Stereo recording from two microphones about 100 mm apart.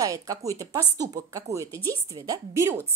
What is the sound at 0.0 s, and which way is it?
Speech, 35° right (ahead or behind).